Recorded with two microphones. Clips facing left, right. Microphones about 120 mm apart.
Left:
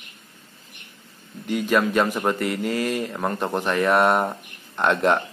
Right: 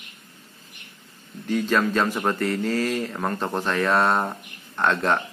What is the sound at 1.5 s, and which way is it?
Speech, 15° left (ahead or behind).